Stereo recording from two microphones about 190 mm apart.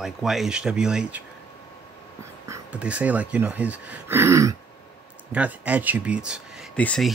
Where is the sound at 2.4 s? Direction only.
10° right (ahead or behind).